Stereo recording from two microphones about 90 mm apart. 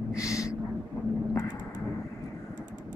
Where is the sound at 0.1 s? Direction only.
35° left (ahead or behind).